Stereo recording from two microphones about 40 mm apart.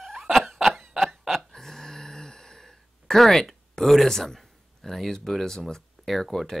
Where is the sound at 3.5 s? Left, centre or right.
Centre.